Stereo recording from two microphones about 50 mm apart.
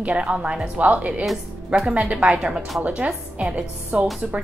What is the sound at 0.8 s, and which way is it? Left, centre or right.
Speech, right.